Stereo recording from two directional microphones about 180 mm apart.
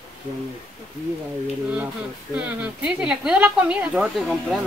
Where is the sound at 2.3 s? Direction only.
10° right (ahead or behind).